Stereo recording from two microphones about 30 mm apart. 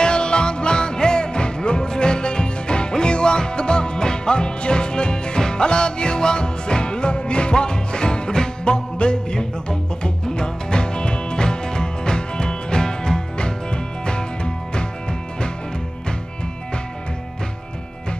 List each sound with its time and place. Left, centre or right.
0.0 s music: left